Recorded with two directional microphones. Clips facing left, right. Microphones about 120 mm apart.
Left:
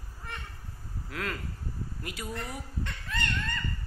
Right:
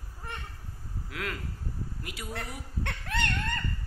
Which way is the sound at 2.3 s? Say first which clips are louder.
Left 1 dB; 70° right (ahead or behind).